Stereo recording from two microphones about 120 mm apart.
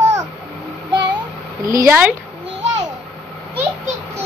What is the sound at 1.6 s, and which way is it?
Speech, 25° right (ahead or behind).